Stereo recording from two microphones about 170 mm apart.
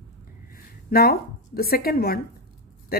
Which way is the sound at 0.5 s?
60° left (ahead or behind).